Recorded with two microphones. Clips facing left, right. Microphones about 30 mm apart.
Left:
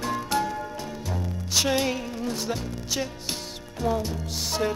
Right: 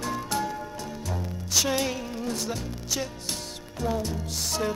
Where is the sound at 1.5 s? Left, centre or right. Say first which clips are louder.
Left 2 dB; centre.